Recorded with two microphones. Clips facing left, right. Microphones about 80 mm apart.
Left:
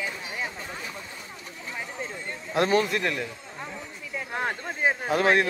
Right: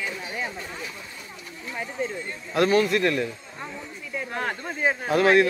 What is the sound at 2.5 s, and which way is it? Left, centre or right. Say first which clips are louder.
Speech: right 3 dB; left.